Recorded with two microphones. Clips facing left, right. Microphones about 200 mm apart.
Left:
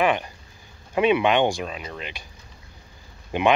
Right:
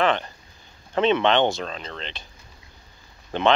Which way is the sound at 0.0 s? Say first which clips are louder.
Even; 10° left (ahead or behind).